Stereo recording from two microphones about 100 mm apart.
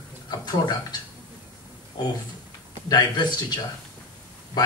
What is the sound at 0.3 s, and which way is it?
Speech, 40° left (ahead or behind).